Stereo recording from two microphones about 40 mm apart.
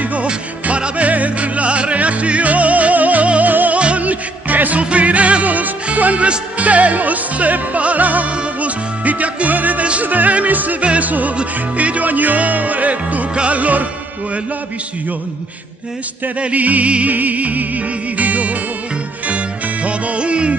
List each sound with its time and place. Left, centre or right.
0.0 s music: right
0.3 s music: right
10.0 s yodeling: right
10.9 s music: right
13.3 s music: right
13.6 s music: right
16.3 s music: right